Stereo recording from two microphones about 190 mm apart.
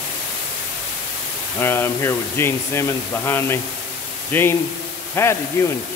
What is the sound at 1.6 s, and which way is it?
Speech, 10° left (ahead or behind).